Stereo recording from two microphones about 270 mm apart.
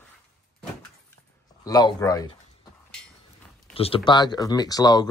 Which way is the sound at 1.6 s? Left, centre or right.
Centre.